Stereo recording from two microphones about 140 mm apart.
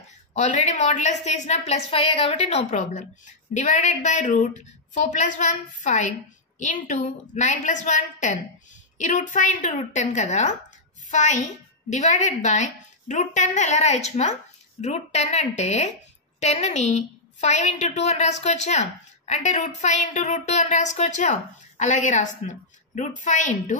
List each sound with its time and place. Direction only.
0.3 s a woman's voice: 60° left (ahead or behind)
2.7 s a woman's voice: 60° left (ahead or behind)